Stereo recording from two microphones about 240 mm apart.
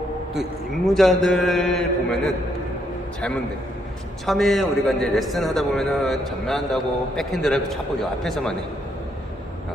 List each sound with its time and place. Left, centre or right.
0.3 s a man's voice: centre
4.3 s a man's voice: centre